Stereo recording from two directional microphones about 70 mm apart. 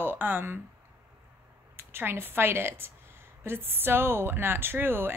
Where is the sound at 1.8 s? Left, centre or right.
Right.